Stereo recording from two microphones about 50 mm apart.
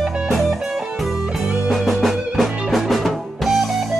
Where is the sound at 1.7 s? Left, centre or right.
Centre.